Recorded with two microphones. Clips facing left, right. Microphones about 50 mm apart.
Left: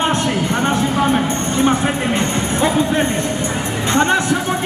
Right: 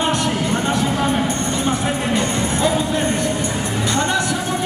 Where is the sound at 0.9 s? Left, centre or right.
Left.